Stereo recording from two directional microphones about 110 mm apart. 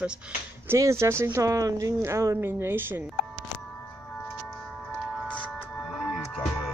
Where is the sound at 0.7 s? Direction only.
25° right (ahead or behind).